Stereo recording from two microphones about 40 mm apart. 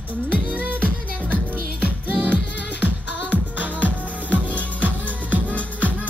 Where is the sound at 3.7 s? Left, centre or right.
Left.